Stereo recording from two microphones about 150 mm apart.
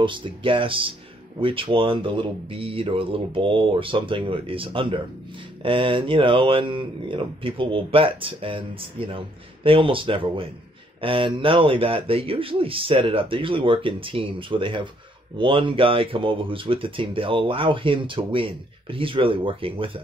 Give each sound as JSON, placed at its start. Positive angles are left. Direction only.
{"t": 0.0, "sound": "speech", "side_deg": -35}